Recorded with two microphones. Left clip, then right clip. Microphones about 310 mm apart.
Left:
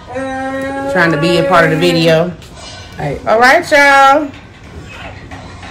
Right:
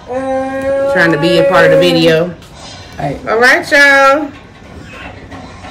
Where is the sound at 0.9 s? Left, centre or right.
Centre.